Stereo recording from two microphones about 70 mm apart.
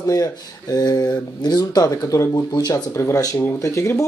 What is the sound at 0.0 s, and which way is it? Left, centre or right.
Speech, left.